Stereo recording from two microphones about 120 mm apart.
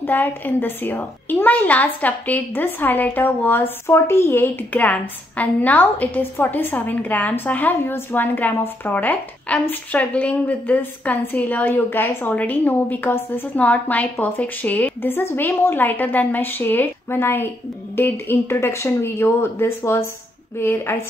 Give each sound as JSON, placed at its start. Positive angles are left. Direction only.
{"t": 0.0, "sound": "a woman's voice", "side_deg": 15}